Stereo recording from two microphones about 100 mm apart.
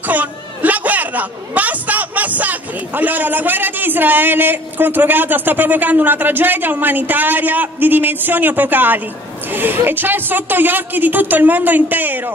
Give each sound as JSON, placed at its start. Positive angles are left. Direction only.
{"t": 0.0, "sound": "speech", "side_deg": -15}